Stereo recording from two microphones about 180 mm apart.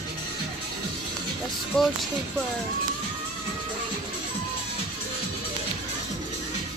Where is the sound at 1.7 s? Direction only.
5° left (ahead or behind).